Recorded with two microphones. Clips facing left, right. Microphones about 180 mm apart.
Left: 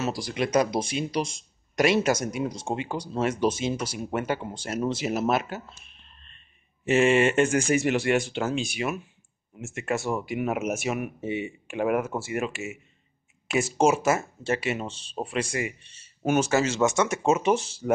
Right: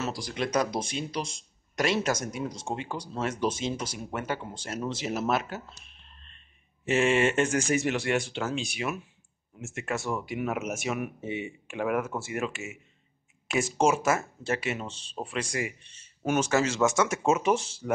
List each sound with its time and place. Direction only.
0.0 s speech: 5° left (ahead or behind)
6.9 s speech: 5° left (ahead or behind)